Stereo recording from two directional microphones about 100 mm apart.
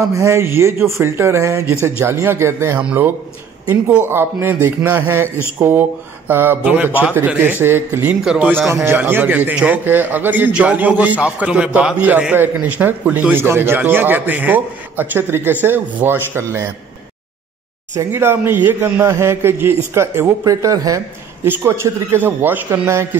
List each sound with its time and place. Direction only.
0.1 s a man's voice: 30° right (ahead or behind)
2.8 s a man's voice: 10° right (ahead or behind)
17.9 s a man's voice: 25° right (ahead or behind)